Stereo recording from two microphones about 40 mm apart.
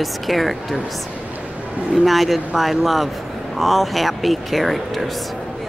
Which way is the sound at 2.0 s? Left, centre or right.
Centre.